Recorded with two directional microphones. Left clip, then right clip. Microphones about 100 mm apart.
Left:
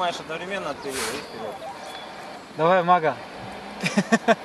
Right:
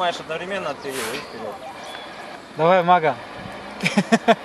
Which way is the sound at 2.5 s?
30° right (ahead or behind).